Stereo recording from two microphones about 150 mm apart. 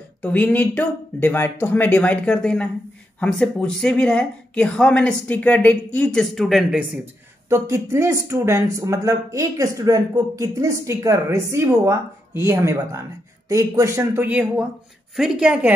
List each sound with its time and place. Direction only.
0.2 s speech: 10° left (ahead or behind)
7.4 s a woman's voice: 20° right (ahead or behind)